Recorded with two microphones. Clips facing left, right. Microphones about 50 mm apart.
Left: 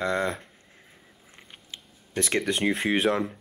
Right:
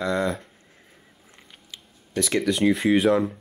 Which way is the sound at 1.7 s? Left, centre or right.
Left.